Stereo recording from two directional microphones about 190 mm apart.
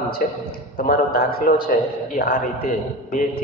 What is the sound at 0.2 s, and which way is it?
A man's voice, 50° left (ahead or behind).